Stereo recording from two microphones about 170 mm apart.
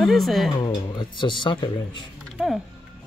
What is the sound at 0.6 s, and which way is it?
Speech, 25° left (ahead or behind).